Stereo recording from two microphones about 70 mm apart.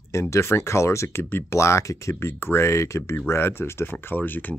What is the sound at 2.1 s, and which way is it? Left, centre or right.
Speech, left.